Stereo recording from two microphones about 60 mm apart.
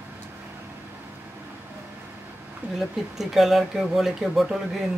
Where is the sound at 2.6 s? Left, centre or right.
Right.